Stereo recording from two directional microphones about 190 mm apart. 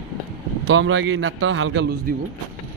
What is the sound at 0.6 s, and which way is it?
A man's voice, 85° right.